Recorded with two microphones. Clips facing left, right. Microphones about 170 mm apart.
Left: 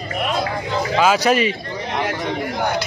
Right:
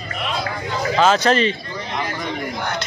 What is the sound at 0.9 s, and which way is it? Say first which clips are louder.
Speech: even; 10° left (ahead or behind).